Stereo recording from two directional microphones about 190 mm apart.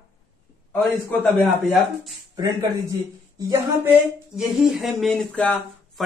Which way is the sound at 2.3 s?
20° right (ahead or behind).